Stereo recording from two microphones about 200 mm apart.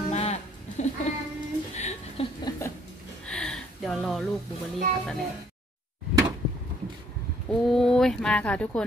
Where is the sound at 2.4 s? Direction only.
15° left (ahead or behind).